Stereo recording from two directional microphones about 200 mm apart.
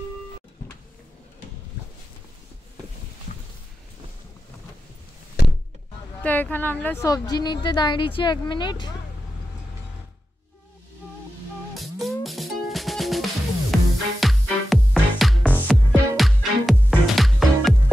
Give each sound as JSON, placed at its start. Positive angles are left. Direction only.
{"t": 3.3, "sound": "a sound", "side_deg": 35}
{"t": 6.2, "sound": "speech", "side_deg": 10}
{"t": 11.7, "sound": "music", "side_deg": 0}